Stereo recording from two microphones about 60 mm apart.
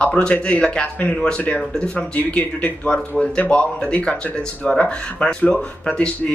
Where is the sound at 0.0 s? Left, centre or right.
Left.